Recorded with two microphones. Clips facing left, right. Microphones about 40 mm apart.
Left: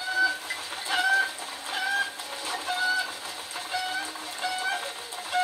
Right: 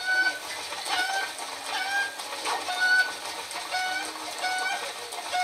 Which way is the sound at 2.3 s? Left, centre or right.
Right.